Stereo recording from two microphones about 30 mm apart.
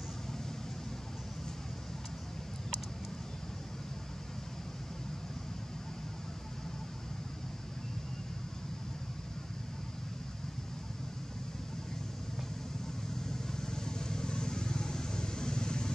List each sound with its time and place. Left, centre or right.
13.3 s vehicle: centre